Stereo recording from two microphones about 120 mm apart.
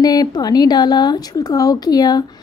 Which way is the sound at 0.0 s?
35° left (ahead or behind).